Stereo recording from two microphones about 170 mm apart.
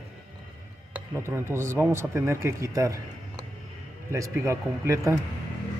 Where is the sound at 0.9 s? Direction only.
10° right (ahead or behind).